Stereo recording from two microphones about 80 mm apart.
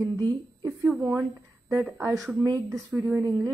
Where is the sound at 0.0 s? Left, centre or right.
Right.